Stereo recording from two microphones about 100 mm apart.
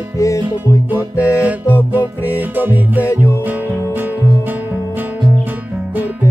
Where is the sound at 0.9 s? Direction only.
15° right (ahead or behind).